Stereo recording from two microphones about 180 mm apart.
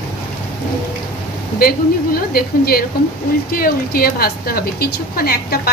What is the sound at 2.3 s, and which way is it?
A woman's voice, 55° left (ahead or behind).